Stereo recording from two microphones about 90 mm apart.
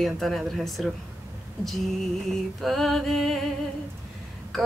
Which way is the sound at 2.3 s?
Centre (ahead or behind).